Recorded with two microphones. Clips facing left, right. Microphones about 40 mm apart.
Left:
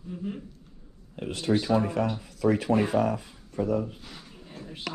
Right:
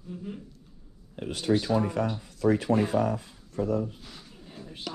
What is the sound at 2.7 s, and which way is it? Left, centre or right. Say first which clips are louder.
Speech: left 1 dB; left.